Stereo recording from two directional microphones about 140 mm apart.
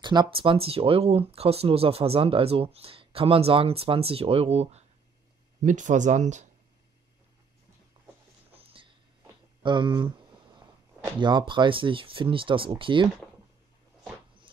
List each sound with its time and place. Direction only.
0.0 s speech: 30° right (ahead or behind); by 4.8 s 50° right (ahead or behind)
5.6 s speech: 60° right (ahead or behind)
8.5 s a sound: 40° right (ahead or behind)
9.6 s speech: 35° right (ahead or behind)
11.1 s speech: 35° right (ahead or behind)